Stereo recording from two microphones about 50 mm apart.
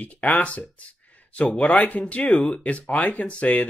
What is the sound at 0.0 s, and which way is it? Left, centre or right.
Speech, left.